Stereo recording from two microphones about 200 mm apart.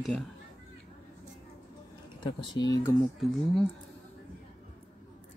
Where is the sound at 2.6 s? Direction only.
20° left (ahead or behind).